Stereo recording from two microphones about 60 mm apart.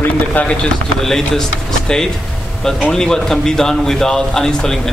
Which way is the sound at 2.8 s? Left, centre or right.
Centre.